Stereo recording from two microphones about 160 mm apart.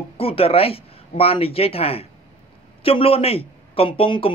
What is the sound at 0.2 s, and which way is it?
Speech, 35° left (ahead or behind).